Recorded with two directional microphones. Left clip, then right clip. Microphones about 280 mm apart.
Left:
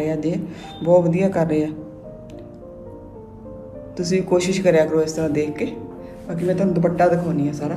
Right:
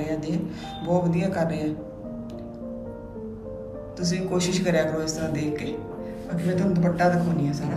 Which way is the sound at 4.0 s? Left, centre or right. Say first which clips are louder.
Left 8 dB; centre.